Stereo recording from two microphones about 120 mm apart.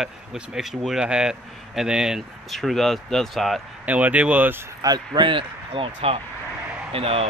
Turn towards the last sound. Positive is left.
turn(degrees=-55)  # may be behind; listen again after turning